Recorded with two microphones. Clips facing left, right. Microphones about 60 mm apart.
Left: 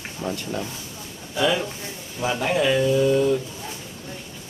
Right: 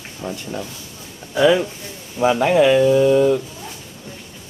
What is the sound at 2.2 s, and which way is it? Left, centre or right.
Speech, right.